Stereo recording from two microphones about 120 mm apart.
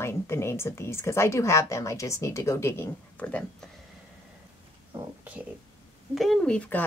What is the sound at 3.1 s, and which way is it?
Speech, 10° left (ahead or behind).